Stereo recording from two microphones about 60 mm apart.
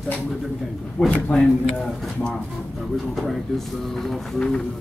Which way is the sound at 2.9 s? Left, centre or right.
Centre.